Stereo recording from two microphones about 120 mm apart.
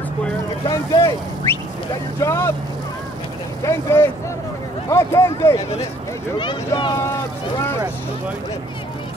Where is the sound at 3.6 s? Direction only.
25° left (ahead or behind).